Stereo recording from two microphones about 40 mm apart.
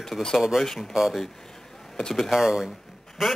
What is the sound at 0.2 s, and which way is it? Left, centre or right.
Speech, centre.